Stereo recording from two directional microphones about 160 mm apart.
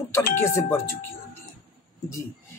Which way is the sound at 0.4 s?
15° left (ahead or behind).